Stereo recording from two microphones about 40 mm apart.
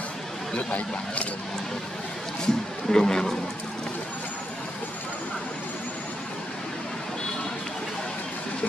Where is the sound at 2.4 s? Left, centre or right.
Centre.